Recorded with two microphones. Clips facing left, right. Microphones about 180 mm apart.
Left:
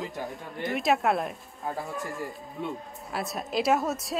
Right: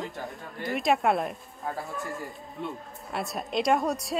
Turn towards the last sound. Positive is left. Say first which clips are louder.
# right 1 dB
turn(degrees=0)  # may be behind; listen again after turning